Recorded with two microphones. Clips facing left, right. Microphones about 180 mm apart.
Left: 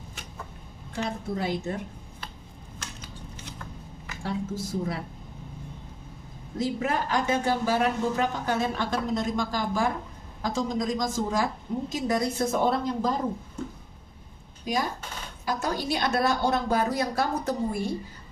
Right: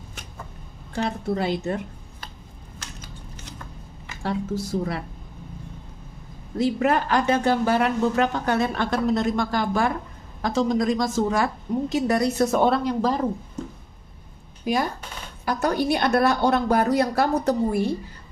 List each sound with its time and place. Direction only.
0.9 s a woman's voice: 70° right (ahead or behind)
4.2 s a woman's voice: 70° right (ahead or behind)
6.6 s a woman's voice: 65° right (ahead or behind)
14.6 s a woman's voice: 60° right (ahead or behind)